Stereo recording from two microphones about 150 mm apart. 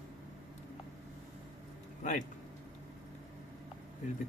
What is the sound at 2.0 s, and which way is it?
Speech, 55° left (ahead or behind).